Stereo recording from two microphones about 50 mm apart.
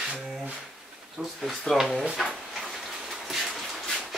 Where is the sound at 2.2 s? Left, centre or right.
Centre.